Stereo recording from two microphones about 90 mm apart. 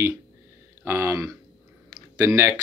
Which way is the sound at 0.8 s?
30° right (ahead or behind).